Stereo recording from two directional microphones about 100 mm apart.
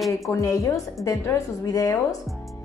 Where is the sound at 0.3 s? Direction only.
30° left (ahead or behind).